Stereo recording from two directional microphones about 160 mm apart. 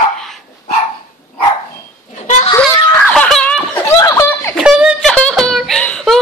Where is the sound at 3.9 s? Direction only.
20° left (ahead or behind).